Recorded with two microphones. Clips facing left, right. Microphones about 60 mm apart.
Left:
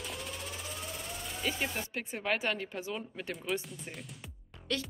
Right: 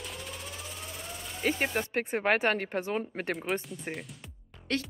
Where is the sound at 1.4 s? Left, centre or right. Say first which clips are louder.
Right 6 dB; right.